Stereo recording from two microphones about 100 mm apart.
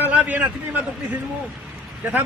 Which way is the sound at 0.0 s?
15° right (ahead or behind).